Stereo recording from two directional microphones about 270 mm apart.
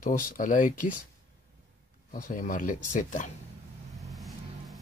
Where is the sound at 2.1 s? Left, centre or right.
Left.